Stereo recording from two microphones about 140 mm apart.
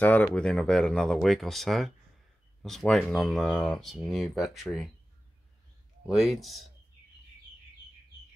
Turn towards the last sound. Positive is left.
turn(degrees=0)  # may be behind; listen again after turning